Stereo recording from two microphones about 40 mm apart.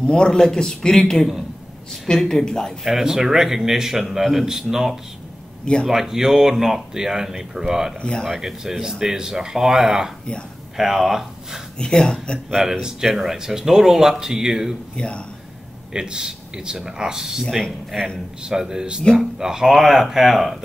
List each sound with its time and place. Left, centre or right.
0.0 s a man's voice: left
2.8 s speech: centre
8.0 s a man's voice: centre
8.4 s speech: centre
11.8 s a man's voice: centre
12.4 s speech: centre
15.0 s speech: left
15.9 s a man's voice: centre